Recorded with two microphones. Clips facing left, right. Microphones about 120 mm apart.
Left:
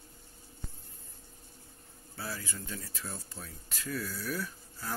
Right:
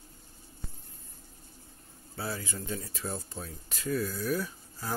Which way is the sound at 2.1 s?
25° right (ahead or behind).